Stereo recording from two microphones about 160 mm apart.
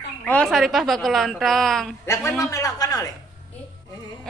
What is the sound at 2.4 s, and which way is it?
Speech, 20° left (ahead or behind).